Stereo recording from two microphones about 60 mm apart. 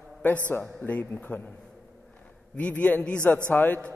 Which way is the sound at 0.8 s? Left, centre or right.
Left.